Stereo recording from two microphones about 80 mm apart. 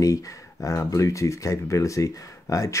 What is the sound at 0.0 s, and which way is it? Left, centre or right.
Speech, left.